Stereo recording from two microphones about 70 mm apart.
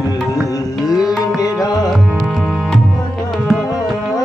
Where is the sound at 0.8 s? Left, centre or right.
Left.